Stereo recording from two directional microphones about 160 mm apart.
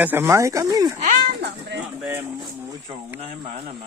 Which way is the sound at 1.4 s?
90° right.